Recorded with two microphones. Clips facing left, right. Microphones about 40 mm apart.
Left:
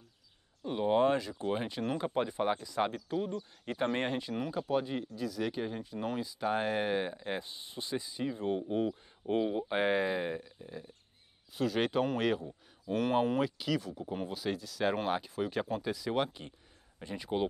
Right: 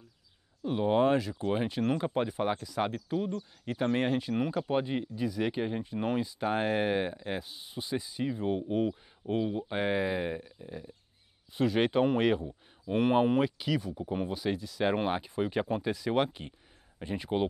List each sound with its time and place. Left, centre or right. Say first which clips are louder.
0.7 s speech: right 2 dB; centre
4.6 s speech: right 2 dB; right
9.2 s speech: even; centre